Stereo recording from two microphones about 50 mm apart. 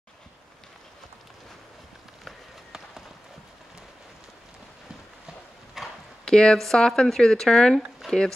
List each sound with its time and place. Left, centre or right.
5.8 s clip-clop: centre
6.2 s speech: centre
8.0 s speech: centre